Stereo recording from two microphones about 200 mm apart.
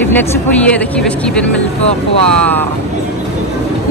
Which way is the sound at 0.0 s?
10° left (ahead or behind).